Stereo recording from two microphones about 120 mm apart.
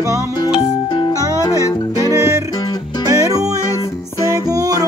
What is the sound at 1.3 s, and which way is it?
Music, 25° left (ahead or behind).